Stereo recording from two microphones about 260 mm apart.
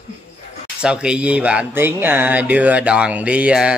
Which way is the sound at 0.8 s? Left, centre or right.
Centre.